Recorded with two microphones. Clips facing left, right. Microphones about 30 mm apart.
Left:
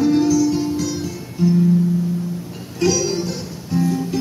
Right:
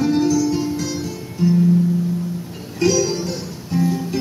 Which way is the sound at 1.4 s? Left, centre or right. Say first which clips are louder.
Even; centre.